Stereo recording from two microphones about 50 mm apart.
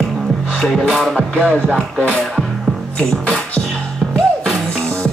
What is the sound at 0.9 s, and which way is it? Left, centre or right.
Speech, centre.